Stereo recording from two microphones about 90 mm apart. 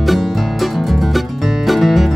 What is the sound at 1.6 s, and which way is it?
Music, centre (ahead or behind).